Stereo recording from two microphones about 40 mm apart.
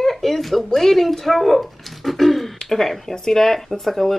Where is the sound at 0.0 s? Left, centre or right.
Centre.